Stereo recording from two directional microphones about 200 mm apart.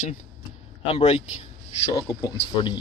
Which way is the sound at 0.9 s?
30° left (ahead or behind).